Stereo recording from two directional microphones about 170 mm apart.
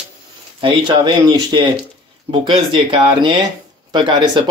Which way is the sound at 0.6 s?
30° right (ahead or behind).